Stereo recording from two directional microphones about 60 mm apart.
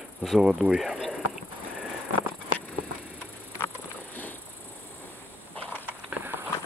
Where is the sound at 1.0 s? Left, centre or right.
Centre.